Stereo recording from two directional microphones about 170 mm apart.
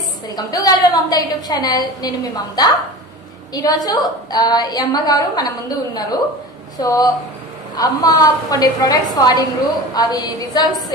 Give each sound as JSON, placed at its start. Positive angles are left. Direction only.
{"t": 0.3, "sound": "a woman's voice", "side_deg": 20}